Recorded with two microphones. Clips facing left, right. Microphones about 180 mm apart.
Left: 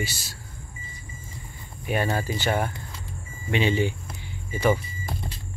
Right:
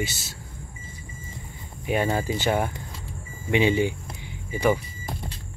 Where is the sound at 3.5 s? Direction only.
15° right (ahead or behind).